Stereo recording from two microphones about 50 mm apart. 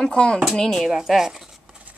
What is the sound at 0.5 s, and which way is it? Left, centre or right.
Speech, centre.